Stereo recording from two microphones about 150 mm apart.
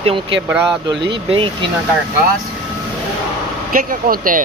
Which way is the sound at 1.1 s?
35° right (ahead or behind).